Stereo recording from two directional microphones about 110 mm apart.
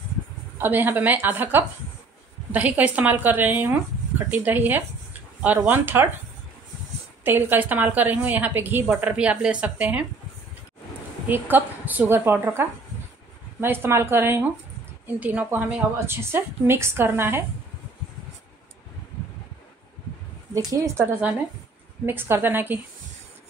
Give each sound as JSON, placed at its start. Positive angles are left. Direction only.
{"t": 0.6, "sound": "a woman's voice", "side_deg": -15}
{"t": 7.2, "sound": "a woman's voice", "side_deg": -20}
{"t": 11.2, "sound": "a woman's voice", "side_deg": -15}
{"t": 20.5, "sound": "a woman's voice", "side_deg": -30}
{"t": 22.0, "sound": "a woman's voice", "side_deg": -20}